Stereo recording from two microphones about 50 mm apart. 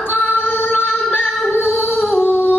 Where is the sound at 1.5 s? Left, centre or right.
Left.